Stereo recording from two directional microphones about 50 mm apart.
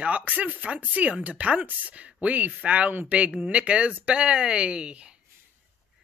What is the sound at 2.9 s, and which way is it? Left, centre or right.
Speech, right.